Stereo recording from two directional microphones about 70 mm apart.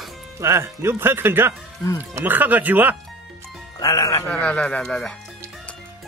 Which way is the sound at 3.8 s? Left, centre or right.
Left.